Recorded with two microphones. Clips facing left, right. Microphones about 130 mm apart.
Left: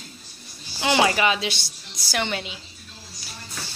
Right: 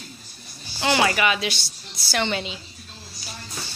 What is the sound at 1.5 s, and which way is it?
Speech, 50° left (ahead or behind).